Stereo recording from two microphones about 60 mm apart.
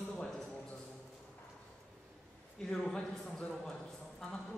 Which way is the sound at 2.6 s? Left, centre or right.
Centre.